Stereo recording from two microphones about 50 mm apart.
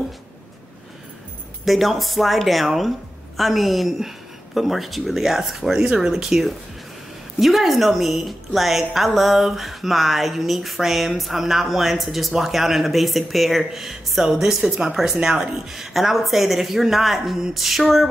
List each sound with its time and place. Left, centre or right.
1.6 s a woman's voice: centre